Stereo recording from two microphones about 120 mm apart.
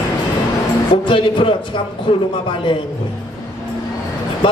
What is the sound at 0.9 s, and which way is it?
Speech, 45° left (ahead or behind).